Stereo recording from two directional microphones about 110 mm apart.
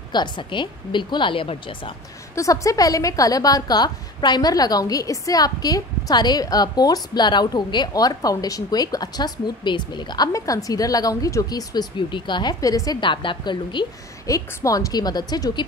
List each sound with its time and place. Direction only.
0.1 s a woman's voice: 45° left (ahead or behind)
2.3 s a woman's voice: 30° left (ahead or behind)
12.5 s a woman's voice: 35° left (ahead or behind)
13.0 s a woman's voice: 50° left (ahead or behind)
14.2 s a woman's voice: 30° left (ahead or behind)